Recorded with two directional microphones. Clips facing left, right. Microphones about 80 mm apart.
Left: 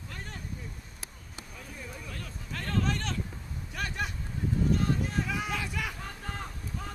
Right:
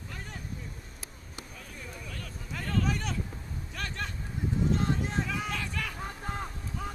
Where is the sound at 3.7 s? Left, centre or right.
Centre.